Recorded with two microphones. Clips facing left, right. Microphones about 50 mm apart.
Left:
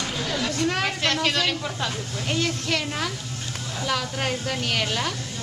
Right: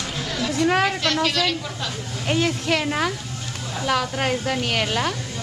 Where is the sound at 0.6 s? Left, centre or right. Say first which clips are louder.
Right 8 dB; centre.